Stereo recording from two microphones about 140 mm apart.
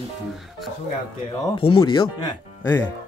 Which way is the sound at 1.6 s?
40° left (ahead or behind).